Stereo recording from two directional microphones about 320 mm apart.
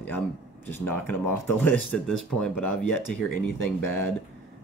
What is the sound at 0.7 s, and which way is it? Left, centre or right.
Speech, centre.